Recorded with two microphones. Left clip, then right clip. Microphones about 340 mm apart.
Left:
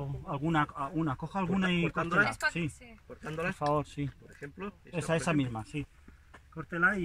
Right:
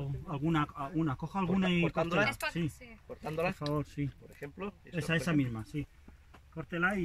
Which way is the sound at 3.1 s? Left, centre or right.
Centre.